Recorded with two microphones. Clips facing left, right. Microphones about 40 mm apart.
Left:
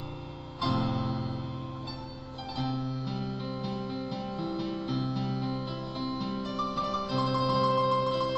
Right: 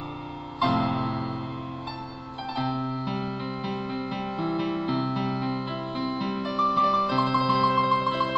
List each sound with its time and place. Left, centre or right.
0.6 s music: right
2.5 s music: right